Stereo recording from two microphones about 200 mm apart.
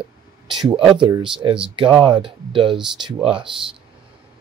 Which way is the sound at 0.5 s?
25° right (ahead or behind).